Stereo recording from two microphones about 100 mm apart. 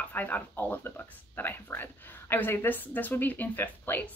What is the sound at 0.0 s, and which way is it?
Speech, 15° left (ahead or behind).